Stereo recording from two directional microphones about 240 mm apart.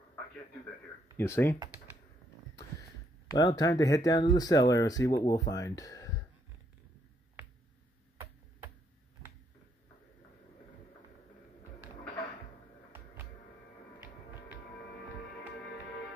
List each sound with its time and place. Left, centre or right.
1.1 s speech: centre
3.3 s speech: centre
13.9 s music: centre